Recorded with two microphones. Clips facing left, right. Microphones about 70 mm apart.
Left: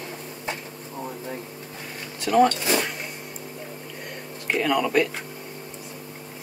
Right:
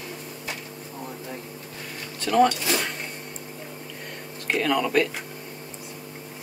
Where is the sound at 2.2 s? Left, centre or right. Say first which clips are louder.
Left 1 dB; centre.